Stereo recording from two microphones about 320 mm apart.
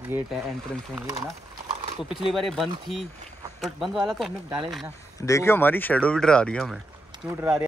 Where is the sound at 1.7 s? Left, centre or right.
Right.